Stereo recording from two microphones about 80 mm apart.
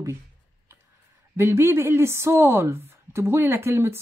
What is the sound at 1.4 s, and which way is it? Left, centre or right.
A woman's voice, right.